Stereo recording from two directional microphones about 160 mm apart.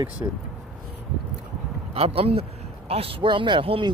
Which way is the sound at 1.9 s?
35° right (ahead or behind).